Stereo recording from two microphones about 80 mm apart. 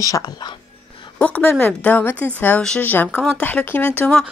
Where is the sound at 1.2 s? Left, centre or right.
Left.